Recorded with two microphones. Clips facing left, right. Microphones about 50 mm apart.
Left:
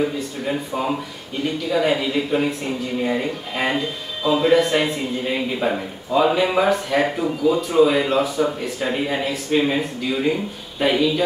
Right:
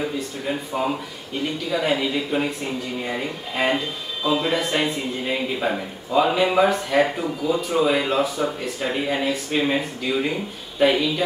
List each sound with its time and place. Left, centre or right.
0.0 s speech: centre
4.2 s speech: centre